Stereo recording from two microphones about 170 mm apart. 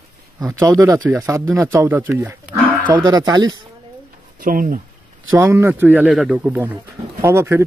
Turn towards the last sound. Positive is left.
turn(degrees=-15)  # may be behind; listen again after turning